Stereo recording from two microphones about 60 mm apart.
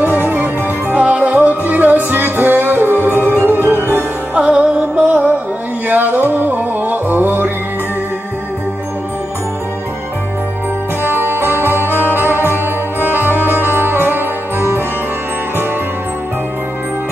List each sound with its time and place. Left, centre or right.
0.0 s music: right
4.4 s music: centre
11.1 s music: right